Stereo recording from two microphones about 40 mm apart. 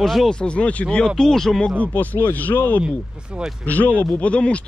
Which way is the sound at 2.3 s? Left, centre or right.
Left.